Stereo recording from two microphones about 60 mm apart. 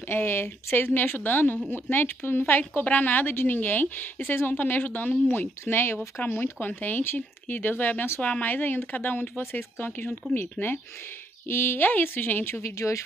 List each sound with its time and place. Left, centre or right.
0.1 s a woman's voice: left
9.4 s speech: left
9.8 s a woman's voice: left
12.7 s speech: left